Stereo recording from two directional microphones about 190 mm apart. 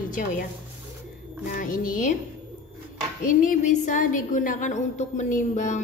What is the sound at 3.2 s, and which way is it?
A woman's voice, 45° left (ahead or behind).